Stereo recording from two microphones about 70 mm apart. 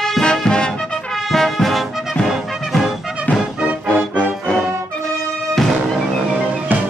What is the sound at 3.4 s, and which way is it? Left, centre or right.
Music, centre.